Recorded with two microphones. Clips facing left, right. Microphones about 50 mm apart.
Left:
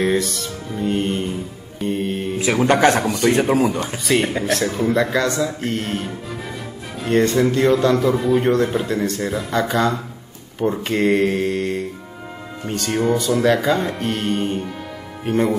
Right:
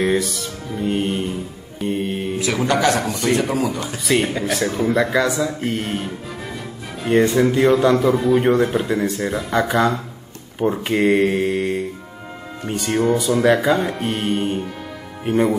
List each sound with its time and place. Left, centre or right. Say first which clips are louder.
0.0 s music: even; centre
2.3 s speech: left 3 dB; left
4.0 s a man's voice: right 1 dB; centre